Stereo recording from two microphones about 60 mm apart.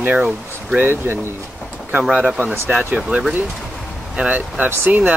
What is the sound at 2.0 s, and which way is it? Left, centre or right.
Speech, centre.